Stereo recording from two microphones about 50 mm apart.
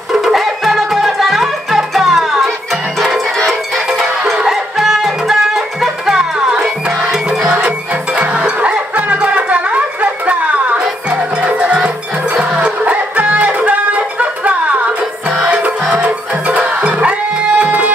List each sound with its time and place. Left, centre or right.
0.1 s music: centre
4.5 s music: centre; by 17.1 s right
17.6 s tabla: right